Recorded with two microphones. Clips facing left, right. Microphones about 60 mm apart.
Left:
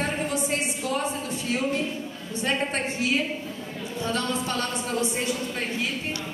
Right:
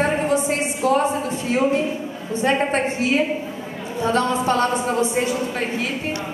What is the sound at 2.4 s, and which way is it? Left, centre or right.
A woman's voice, right.